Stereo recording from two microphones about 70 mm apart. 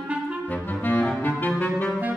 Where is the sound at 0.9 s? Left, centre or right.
Left.